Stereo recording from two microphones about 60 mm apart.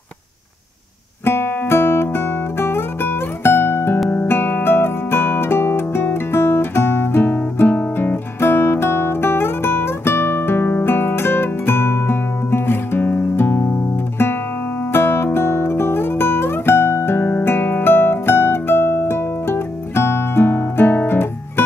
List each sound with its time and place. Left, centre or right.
1.2 s music: left
14.9 s music: left